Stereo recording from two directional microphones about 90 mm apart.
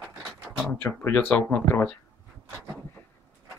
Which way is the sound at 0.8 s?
25° left (ahead or behind).